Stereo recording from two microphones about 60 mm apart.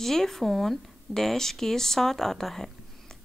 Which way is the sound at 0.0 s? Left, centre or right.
Centre.